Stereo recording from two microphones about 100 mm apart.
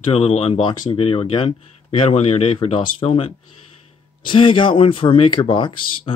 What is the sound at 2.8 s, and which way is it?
Speech, 65° left (ahead or behind).